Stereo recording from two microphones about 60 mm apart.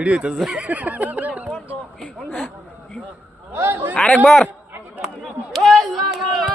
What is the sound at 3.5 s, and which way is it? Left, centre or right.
Speech, right.